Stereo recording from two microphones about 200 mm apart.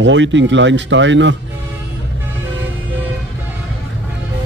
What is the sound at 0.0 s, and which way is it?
Speech, 65° right (ahead or behind).